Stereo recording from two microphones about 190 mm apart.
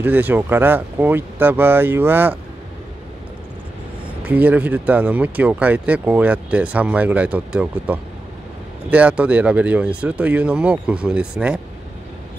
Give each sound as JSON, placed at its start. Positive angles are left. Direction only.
{"t": 0.0, "sound": "speech", "side_deg": -10}
{"t": 4.3, "sound": "speech", "side_deg": -10}